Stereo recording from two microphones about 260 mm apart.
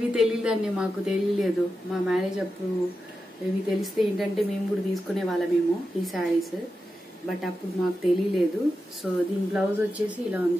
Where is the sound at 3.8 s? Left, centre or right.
Centre.